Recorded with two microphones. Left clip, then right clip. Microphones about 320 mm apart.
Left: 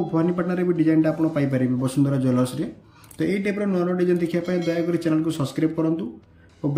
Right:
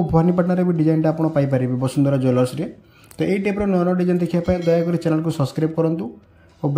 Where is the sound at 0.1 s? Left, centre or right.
Centre.